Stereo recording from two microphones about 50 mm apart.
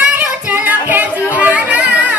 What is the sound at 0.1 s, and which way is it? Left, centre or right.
Child singing, right.